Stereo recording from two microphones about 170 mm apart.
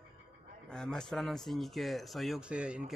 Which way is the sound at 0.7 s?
5° left (ahead or behind).